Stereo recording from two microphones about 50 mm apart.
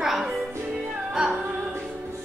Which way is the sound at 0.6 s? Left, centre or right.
Right.